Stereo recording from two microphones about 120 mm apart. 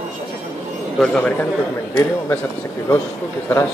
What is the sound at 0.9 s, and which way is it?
Speech, 5° left (ahead or behind).